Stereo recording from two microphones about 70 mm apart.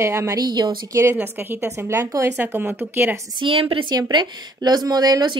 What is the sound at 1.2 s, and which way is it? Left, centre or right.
Speech, right.